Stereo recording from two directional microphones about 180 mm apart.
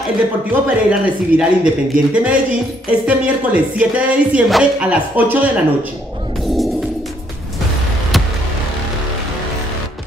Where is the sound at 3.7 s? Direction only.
5° right (ahead or behind).